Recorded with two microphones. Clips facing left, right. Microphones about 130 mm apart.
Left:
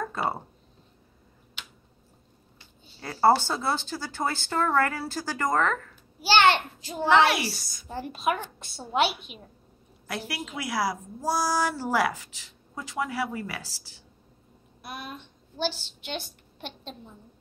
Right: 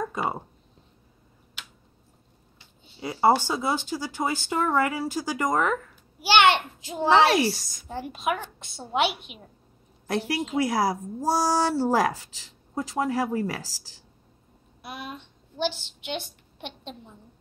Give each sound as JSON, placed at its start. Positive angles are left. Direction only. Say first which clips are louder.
{"t": 2.8, "sound": "a child's voice", "louder": "even", "side_deg": -20}
{"t": 8.0, "sound": "speech", "louder": "left 1 dB", "side_deg": -15}
{"t": 10.0, "sound": "a woman's voice", "louder": "right 7 dB", "side_deg": -35}
{"t": 14.8, "sound": "a child's voice", "louder": "right 1 dB", "side_deg": -25}